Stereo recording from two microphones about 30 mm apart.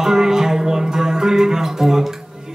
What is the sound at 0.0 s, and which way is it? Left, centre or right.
Music, centre.